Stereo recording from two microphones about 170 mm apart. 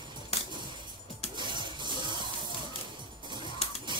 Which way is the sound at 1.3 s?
25° right (ahead or behind).